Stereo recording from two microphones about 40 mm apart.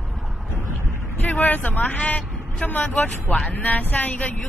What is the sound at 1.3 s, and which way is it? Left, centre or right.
A man's voice, left.